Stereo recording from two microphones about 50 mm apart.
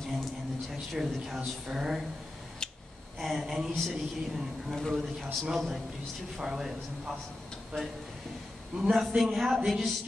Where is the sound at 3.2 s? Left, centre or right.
Centre.